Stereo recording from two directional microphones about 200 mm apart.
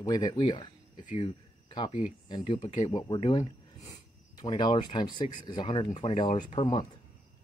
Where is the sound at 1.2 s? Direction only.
25° left (ahead or behind).